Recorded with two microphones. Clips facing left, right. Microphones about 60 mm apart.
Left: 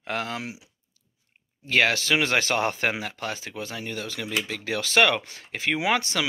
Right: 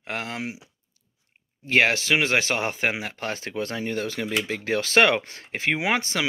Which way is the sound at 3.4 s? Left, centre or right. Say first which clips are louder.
Right 5 dB; right.